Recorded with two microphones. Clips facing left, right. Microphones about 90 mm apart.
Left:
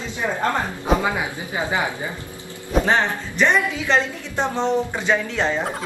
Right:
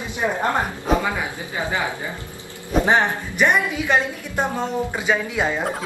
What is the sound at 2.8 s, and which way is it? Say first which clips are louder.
A woman's voice: right 3 dB; 15° right (ahead or behind).